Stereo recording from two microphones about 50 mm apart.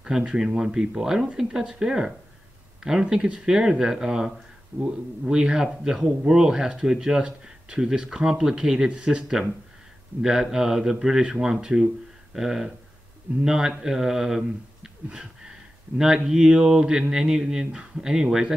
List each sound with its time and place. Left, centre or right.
0.0 s speech: centre
4.7 s speech: right
5.3 s speech: centre